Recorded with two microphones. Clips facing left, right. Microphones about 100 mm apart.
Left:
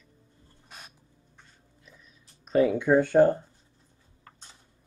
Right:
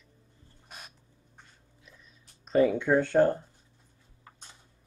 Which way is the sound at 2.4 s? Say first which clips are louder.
Left 1 dB; centre (ahead or behind).